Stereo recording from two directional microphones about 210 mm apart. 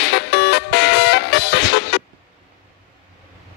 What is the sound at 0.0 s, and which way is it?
Music, 50° left (ahead or behind).